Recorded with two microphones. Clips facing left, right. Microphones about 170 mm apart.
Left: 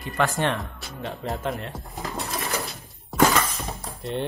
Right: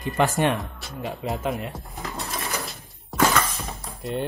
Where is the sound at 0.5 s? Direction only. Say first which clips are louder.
Right 2 dB; centre (ahead or behind).